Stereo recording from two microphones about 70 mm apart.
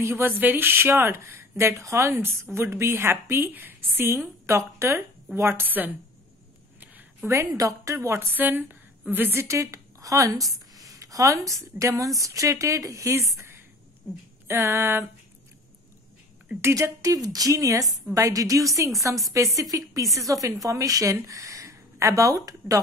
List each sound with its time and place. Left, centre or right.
0.0 s speech: right
7.2 s a woman's voice: right
14.0 s a woman's voice: centre
14.5 s speech: right
16.6 s a woman's voice: right